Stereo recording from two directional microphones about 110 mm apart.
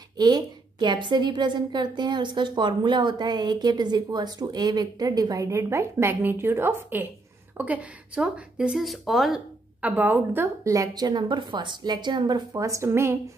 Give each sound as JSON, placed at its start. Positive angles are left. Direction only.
{"t": 0.2, "sound": "a woman's voice", "side_deg": -35}
{"t": 9.8, "sound": "a woman's voice", "side_deg": -15}